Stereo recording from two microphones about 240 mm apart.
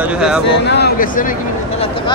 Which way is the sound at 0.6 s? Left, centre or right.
Left.